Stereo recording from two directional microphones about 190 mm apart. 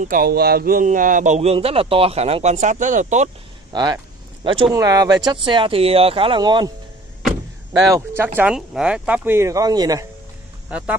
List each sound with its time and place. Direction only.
0.0 s speech: 50° right (ahead or behind)
3.7 s speech: 20° right (ahead or behind)
7.9 s speech: 10° right (ahead or behind)